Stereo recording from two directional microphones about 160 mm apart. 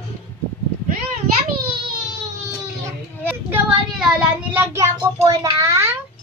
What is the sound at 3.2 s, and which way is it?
Speech, 10° right (ahead or behind).